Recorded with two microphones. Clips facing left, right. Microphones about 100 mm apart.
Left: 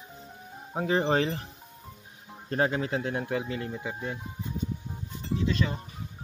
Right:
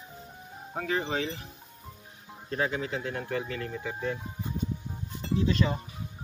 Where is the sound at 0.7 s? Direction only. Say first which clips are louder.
Left 4 dB; 25° left (ahead or behind).